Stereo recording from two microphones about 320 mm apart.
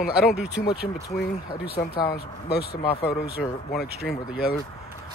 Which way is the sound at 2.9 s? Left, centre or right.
Centre.